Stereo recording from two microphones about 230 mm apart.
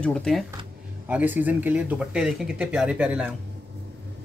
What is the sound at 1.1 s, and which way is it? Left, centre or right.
Speech, centre.